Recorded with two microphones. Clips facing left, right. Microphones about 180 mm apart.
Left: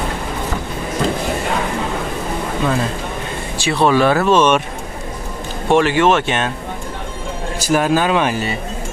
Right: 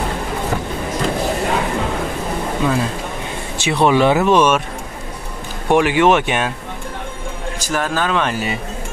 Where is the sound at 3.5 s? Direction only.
20° right (ahead or behind).